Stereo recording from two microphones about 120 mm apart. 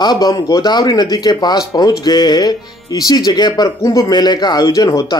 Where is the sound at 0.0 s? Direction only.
35° left (ahead or behind).